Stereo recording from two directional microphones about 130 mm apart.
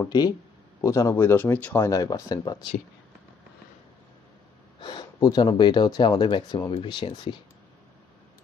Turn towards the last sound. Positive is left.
turn(degrees=35)  # may be behind; listen again after turning